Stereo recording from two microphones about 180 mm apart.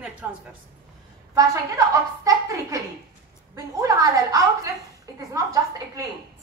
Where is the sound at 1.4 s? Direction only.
20° right (ahead or behind).